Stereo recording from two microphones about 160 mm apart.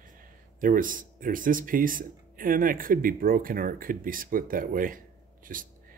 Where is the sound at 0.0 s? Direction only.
60° right (ahead or behind).